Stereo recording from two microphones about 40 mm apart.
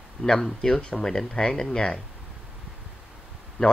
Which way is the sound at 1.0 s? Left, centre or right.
Centre.